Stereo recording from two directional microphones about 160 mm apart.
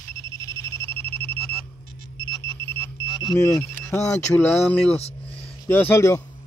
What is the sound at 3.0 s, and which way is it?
Speech, 25° left (ahead or behind).